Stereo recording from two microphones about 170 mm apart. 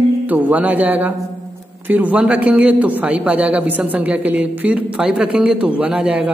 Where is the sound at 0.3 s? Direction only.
10° right (ahead or behind).